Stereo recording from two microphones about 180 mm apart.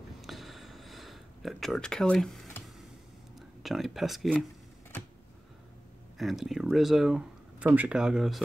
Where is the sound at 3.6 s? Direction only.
Centre (ahead or behind).